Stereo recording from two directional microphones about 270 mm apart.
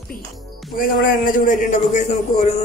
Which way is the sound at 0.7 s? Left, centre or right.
Left.